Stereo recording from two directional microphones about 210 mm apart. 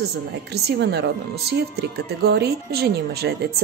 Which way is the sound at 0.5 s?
50° right (ahead or behind).